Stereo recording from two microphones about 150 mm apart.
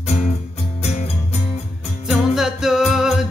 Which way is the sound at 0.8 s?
45° left (ahead or behind).